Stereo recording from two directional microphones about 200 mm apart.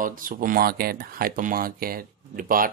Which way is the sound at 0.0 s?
45° right (ahead or behind).